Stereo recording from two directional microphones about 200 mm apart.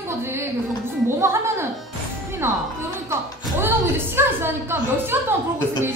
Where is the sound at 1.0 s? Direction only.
15° right (ahead or behind).